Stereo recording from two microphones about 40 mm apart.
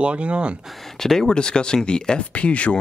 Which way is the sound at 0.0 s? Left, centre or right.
Right.